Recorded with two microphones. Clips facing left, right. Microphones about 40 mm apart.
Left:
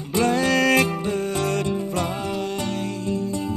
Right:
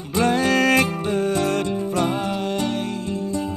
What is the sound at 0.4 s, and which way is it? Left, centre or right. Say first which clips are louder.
Music: right 1 dB; centre.